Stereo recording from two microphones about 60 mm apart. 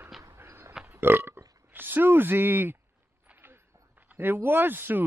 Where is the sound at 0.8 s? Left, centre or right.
Right.